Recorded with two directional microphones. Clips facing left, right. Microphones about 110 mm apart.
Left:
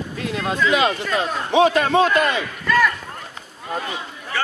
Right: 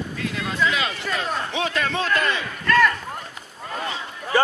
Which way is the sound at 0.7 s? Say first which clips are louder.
Left 7 dB; 20° left (ahead or behind).